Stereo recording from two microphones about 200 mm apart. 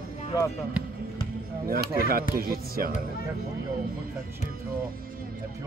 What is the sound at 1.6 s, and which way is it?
Speech, 50° right (ahead or behind).